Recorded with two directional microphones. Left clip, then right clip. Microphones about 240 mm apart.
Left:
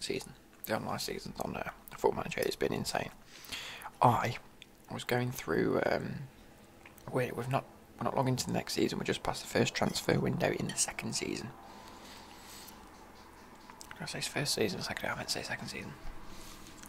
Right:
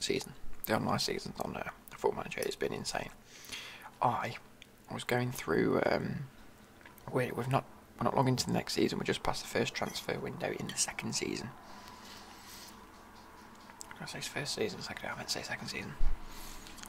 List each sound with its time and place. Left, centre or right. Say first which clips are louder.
0.0 s speech: right 3 dB; centre
4.8 s speech: even; centre
13.9 s speech: left 3 dB; centre